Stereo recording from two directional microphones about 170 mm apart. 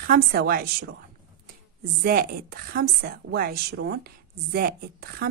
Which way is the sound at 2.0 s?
65° right (ahead or behind).